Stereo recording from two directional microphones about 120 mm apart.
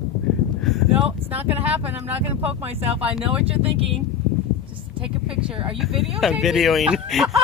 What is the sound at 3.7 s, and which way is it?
Speech, 50° right (ahead or behind).